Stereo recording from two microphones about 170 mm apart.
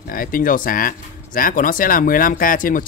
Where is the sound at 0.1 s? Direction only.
55° left (ahead or behind).